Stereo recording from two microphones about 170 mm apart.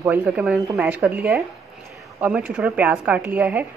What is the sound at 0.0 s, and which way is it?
A woman's voice, 10° right (ahead or behind).